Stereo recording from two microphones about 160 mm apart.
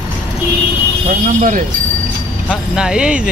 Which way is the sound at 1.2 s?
55° right (ahead or behind).